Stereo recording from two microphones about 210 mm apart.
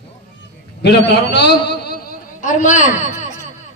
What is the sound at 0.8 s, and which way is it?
A man's voice, 50° left (ahead or behind).